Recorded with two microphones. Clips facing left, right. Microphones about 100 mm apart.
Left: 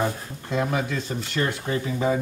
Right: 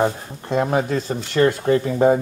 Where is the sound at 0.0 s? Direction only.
40° right (ahead or behind).